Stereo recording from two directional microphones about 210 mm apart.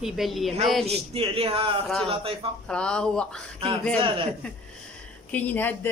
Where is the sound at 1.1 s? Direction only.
25° right (ahead or behind).